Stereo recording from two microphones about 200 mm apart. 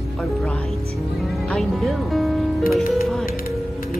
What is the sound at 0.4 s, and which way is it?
Speech, 5° left (ahead or behind).